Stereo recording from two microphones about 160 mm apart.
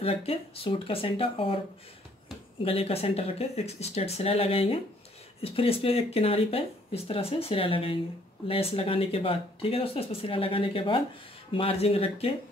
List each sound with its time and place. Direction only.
0.0 s speech: 35° left (ahead or behind)
2.6 s speech: 40° left (ahead or behind)